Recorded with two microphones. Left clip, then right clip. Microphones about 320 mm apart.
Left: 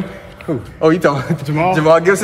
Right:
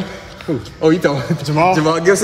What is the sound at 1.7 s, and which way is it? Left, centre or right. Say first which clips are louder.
Speech: left 3 dB; left.